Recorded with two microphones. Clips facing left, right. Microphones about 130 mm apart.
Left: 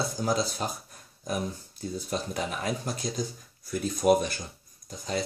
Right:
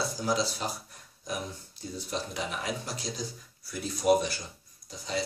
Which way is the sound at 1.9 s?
50° left (ahead or behind).